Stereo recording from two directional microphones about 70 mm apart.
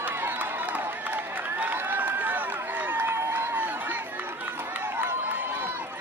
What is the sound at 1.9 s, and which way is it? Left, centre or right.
Run, right.